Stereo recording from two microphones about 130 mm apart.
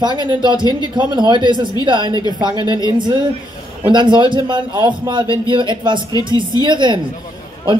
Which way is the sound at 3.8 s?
35° right (ahead or behind).